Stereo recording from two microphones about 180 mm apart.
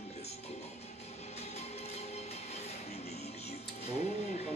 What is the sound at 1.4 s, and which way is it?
Music, 35° left (ahead or behind).